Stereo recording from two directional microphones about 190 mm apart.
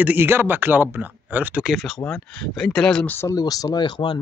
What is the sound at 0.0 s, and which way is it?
Speech, 10° right (ahead or behind).